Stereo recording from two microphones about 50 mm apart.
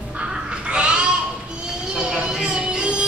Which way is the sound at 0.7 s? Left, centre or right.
Right.